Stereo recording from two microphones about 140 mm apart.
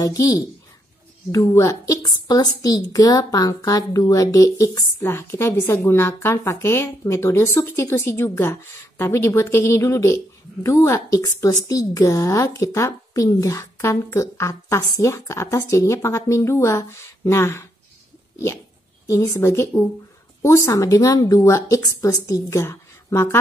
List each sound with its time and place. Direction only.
0.0 s a woman's voice: 25° left (ahead or behind)
1.3 s a woman's voice: 25° left (ahead or behind)
19.0 s a woman's voice: 20° left (ahead or behind)